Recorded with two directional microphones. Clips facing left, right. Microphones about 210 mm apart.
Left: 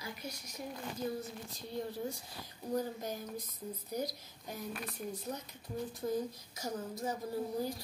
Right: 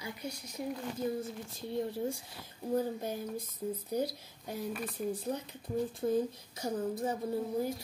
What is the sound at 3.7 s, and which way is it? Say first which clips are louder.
Speech: right 2 dB; 30° right (ahead or behind).